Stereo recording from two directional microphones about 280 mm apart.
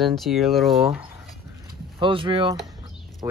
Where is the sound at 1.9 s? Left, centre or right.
Centre.